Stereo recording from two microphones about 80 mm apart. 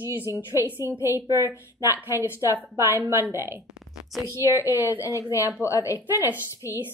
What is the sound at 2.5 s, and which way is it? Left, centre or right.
A woman's voice, right.